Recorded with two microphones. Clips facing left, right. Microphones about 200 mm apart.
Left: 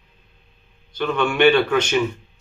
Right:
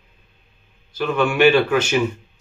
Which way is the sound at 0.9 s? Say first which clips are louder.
Right 1 dB; 5° right (ahead or behind).